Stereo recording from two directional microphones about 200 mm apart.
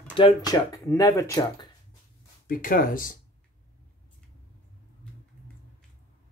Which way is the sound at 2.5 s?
45° left (ahead or behind).